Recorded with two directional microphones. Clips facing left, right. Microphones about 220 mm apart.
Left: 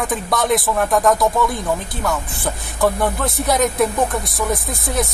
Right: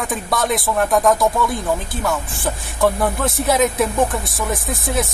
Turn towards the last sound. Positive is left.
turn(degrees=0)  # may be behind; listen again after turning